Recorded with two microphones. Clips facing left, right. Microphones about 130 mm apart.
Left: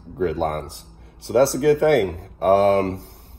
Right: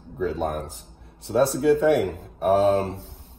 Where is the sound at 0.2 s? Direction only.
75° left (ahead or behind).